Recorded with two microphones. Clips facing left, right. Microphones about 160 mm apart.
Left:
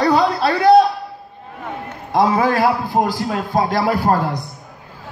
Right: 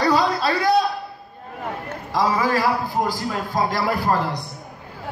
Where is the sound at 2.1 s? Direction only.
55° left (ahead or behind).